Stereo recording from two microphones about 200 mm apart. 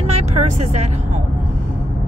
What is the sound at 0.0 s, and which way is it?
Vehicle, 35° right (ahead or behind).